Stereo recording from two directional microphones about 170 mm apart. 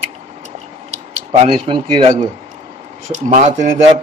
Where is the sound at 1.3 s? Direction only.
30° right (ahead or behind).